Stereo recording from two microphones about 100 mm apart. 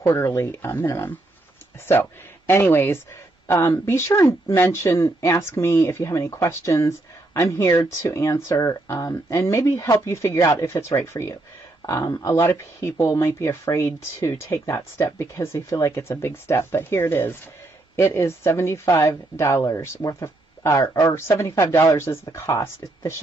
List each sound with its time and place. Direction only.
0.0 s speech: 25° left (ahead or behind)